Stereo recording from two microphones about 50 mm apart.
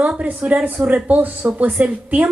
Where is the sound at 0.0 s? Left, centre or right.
Right.